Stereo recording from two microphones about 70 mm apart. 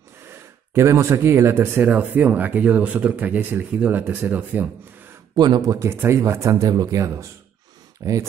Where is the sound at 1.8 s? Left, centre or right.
Right.